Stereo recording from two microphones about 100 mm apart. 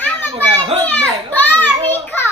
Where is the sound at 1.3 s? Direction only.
15° left (ahead or behind).